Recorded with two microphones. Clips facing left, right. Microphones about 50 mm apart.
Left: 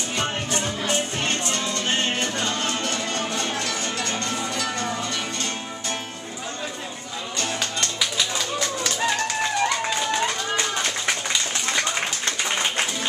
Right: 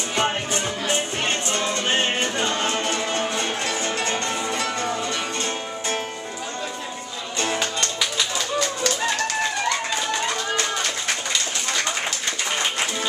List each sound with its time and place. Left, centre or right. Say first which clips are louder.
0.1 s music: right 3 dB; right
7.5 s music: right 2 dB; centre